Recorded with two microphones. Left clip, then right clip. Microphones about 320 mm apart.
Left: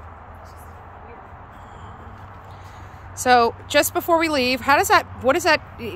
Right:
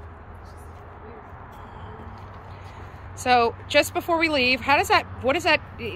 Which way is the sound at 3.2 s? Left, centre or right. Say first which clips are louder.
Left 4 dB; centre.